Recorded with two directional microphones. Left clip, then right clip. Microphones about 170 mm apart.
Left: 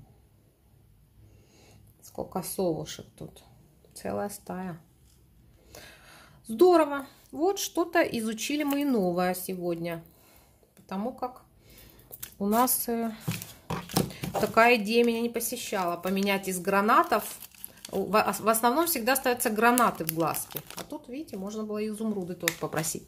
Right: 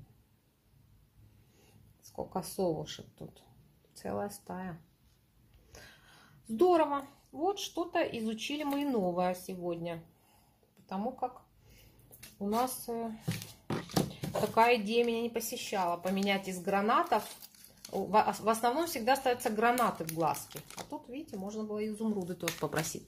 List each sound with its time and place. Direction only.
2.1 s speech: 10° left (ahead or behind); by 9.9 s 30° left (ahead or behind)
10.9 s speech: 20° left (ahead or behind)
12.4 s speech: 45° left (ahead or behind)
14.5 s speech: 35° left (ahead or behind)
16.1 s speech: 35° left (ahead or behind)
22.2 s speech: 5° right (ahead or behind)